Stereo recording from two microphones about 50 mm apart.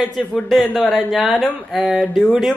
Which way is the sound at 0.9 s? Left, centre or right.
Centre.